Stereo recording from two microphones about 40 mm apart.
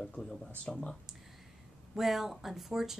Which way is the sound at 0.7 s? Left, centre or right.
Centre.